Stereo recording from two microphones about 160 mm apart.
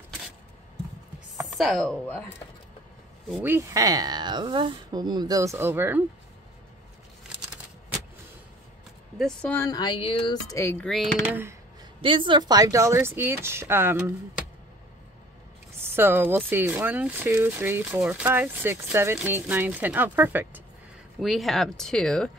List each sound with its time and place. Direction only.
1.5 s speech: centre (ahead or behind)
3.4 s speech: 15° right (ahead or behind)
9.2 s speech: 10° left (ahead or behind)
9.7 s speech: 25° left (ahead or behind)
10.5 s speech: 15° left (ahead or behind)
11.2 s speech: 15° right (ahead or behind)
12.0 s speech: 30° right (ahead or behind); by 14.1 s 15° right (ahead or behind)
15.8 s speech: 15° right (ahead or behind)
21.2 s speech: centre (ahead or behind)